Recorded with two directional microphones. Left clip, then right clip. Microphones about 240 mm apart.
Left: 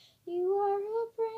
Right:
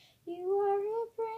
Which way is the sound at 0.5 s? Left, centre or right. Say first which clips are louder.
Right 3 dB; left.